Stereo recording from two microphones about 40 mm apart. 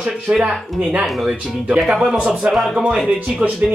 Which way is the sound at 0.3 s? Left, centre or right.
Right.